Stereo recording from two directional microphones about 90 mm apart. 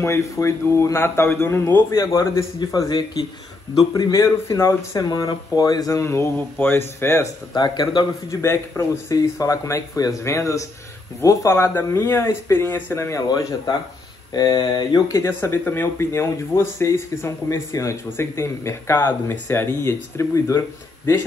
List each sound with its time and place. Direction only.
0.0 s speech: 30° left (ahead or behind)
5.0 s speech: 45° left (ahead or behind); by 7.2 s 30° left (ahead or behind)
7.5 s speech: 50° left (ahead or behind)
8.3 s speech: 30° left (ahead or behind)
9.1 s speech: 40° left (ahead or behind)
13.3 s speech: 50° left (ahead or behind)
15.1 s speech: 30° left (ahead or behind)